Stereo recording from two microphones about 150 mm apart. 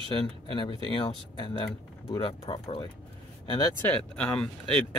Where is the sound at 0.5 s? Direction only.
30° left (ahead or behind).